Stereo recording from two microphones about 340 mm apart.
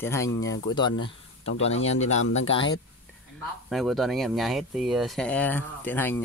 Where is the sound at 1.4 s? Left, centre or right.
Left.